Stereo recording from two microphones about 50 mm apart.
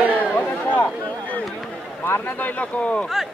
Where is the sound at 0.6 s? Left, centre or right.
Left.